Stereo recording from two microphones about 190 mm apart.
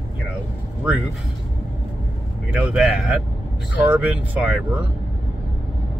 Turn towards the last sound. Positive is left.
turn(degrees=-5)  # may be behind; listen again after turning